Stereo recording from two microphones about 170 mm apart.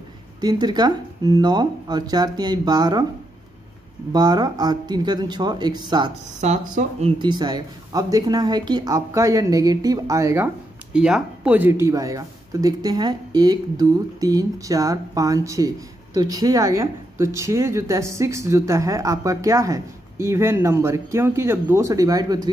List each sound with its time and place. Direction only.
0.4 s speech: 25° right (ahead or behind)
4.1 s speech: 25° right (ahead or behind)
6.7 s speech: 35° right (ahead or behind)